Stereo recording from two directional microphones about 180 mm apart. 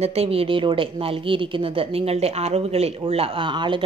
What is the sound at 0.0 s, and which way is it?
Speech, 35° right (ahead or behind).